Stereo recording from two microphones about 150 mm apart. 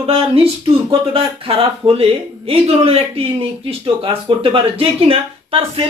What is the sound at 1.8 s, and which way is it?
Speech, 40° right (ahead or behind).